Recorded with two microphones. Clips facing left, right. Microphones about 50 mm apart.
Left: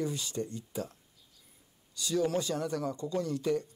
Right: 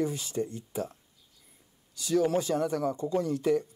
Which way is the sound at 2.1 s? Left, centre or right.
Right.